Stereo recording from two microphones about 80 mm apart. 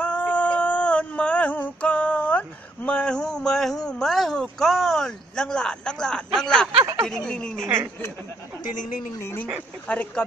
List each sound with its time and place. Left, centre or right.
0.0 s a sound: centre
7.1 s speech: centre
7.6 s speech: right
9.2 s speech: left
9.8 s speech: centre